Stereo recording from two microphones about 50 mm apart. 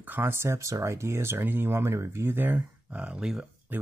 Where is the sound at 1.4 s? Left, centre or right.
Right.